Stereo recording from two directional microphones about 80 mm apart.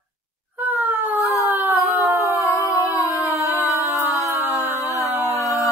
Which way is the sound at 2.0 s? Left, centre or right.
Right.